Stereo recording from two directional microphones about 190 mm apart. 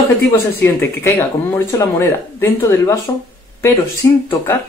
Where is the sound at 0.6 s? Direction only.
10° left (ahead or behind).